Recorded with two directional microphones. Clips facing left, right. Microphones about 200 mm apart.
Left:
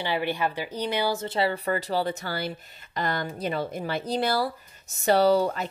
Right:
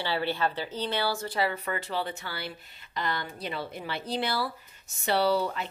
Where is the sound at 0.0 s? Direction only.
15° left (ahead or behind).